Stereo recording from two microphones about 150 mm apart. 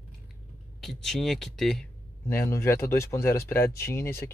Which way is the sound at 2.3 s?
15° left (ahead or behind).